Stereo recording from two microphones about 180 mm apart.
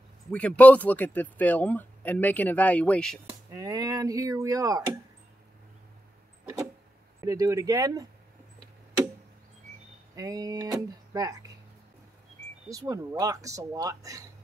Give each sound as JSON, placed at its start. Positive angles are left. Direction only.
{"t": 0.3, "sound": "speech", "side_deg": 5}
{"t": 3.3, "sound": "speech", "side_deg": -20}
{"t": 7.2, "sound": "speech", "side_deg": -20}
{"t": 10.1, "sound": "speech", "side_deg": -20}
{"t": 12.6, "sound": "speech", "side_deg": -20}